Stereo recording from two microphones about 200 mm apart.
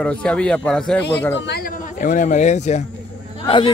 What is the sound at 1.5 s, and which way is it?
Speech, 45° left (ahead or behind).